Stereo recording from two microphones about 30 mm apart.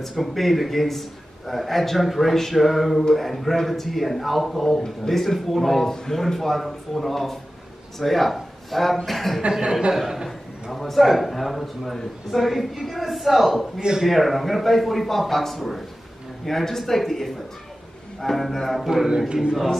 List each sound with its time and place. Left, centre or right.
0.1 s a man's voice: centre
9.6 s speech: right
10.0 s a man's voice: centre
10.7 s a man's voice: centre
13.7 s speech: right
14.0 s a man's voice: centre
19.0 s speech: right
19.5 s a man's voice: centre